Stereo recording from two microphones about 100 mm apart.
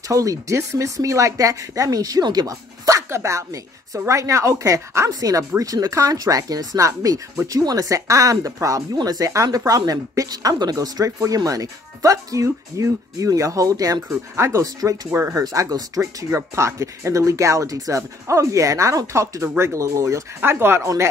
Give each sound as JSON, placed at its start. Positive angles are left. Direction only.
{"t": 0.1, "sound": "speech", "side_deg": -35}